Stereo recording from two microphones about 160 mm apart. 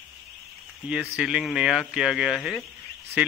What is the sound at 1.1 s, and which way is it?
A man's voice, 5° right (ahead or behind).